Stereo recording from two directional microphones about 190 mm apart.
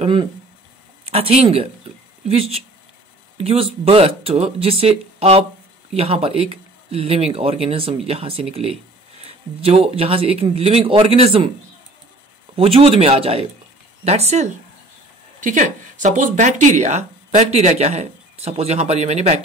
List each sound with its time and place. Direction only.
0.0 s speech: 25° right (ahead or behind)
12.5 s speech: 30° right (ahead or behind)